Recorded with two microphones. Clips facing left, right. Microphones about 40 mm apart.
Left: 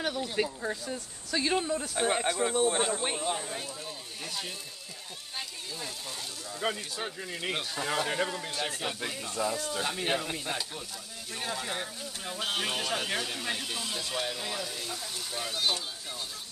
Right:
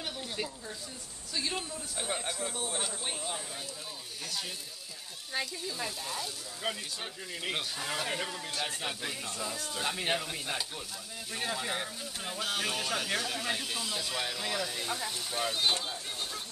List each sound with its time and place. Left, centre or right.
0.0 s speech: left
1.6 s speech: left
2.9 s speech: left
3.2 s speech: left
6.7 s speech: centre
12.4 s speech: centre
14.8 s speech: right
15.3 s speech: centre